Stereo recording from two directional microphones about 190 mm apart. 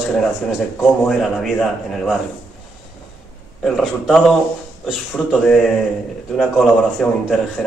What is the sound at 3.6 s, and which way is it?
Speech, centre (ahead or behind).